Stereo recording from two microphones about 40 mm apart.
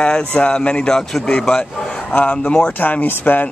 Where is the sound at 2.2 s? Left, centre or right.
Left.